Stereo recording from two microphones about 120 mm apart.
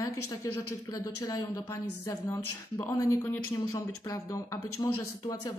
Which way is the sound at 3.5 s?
30° left (ahead or behind).